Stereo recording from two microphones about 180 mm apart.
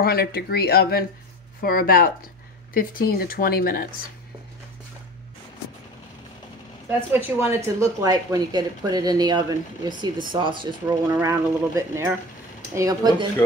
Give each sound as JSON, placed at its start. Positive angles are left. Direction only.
{"t": 0.0, "sound": "speech", "side_deg": 60}
{"t": 6.9, "sound": "speech", "side_deg": -10}